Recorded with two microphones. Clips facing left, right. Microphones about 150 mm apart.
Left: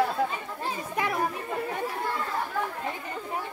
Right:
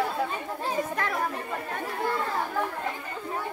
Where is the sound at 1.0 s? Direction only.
15° left (ahead or behind).